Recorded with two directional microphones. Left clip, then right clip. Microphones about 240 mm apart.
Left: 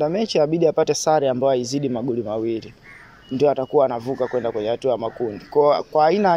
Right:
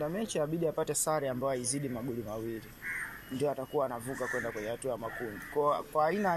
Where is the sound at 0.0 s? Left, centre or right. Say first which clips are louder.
Left 14 dB; left.